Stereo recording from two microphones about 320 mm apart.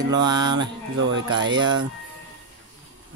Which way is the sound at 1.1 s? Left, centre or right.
Right.